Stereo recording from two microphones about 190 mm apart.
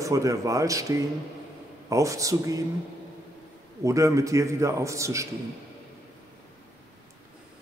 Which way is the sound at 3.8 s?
15° right (ahead or behind).